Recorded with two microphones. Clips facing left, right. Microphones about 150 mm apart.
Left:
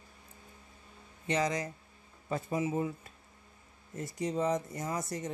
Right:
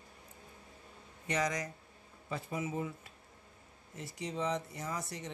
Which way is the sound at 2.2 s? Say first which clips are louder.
Left 5 dB; 45° left (ahead or behind).